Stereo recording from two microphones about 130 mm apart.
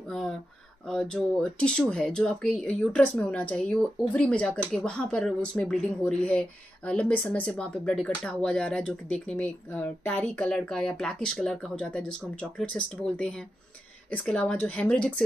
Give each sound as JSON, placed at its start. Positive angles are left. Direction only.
{"t": 0.8, "sound": "speech", "side_deg": 5}